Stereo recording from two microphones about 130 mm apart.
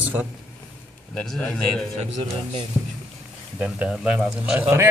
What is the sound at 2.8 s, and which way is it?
Speech, 15° right (ahead or behind).